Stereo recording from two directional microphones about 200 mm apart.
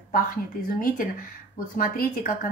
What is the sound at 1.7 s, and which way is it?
Speech, 45° left (ahead or behind).